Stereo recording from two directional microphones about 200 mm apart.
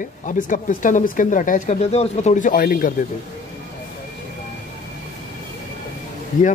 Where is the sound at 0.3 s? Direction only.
40° left (ahead or behind).